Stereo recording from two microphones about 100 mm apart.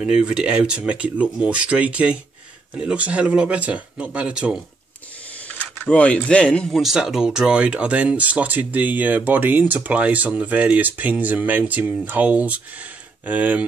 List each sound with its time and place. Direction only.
0.0 s speech: 10° right (ahead or behind)
5.6 s speech: 10° left (ahead or behind)
6.8 s speech: 5° right (ahead or behind)